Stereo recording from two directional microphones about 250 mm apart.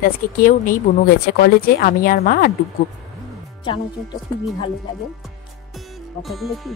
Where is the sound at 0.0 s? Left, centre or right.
Left.